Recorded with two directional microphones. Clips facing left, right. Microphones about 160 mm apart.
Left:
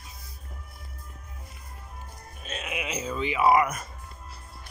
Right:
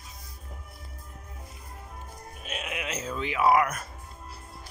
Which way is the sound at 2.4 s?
Centre (ahead or behind).